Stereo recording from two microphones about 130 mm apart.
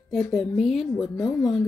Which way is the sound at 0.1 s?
5° left (ahead or behind).